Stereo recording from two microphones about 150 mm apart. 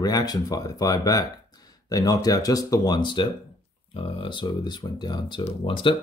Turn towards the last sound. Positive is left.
turn(degrees=35)  # may be behind; listen again after turning